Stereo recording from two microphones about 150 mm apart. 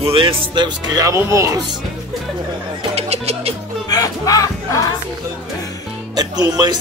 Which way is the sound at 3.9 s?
25° left (ahead or behind).